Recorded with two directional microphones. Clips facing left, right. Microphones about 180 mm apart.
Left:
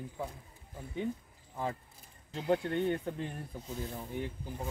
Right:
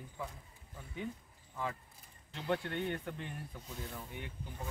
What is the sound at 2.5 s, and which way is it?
Speech, 35° left (ahead or behind).